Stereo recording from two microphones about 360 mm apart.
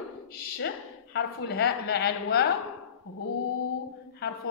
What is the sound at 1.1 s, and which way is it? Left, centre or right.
A woman's voice, left.